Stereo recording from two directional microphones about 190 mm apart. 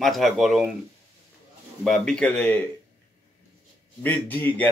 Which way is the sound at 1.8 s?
Centre (ahead or behind).